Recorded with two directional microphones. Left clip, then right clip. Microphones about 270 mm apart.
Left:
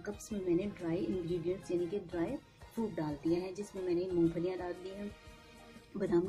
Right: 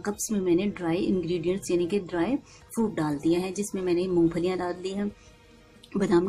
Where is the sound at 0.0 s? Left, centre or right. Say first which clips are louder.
Right 11 dB; right.